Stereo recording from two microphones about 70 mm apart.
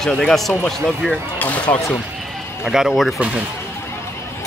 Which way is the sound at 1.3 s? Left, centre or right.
Left.